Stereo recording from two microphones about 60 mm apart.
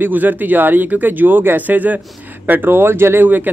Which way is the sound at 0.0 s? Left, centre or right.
Right.